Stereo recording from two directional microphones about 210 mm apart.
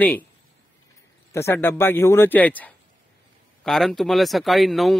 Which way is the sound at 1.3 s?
10° left (ahead or behind).